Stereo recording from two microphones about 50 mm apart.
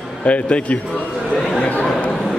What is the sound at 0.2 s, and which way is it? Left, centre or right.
Speech, left.